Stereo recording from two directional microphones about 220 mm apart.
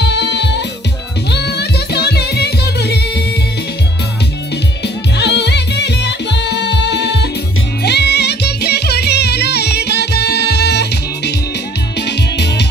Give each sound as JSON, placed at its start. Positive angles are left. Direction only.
{"t": 0.0, "sound": "music", "side_deg": 50}
{"t": 4.8, "sound": "music", "side_deg": 50}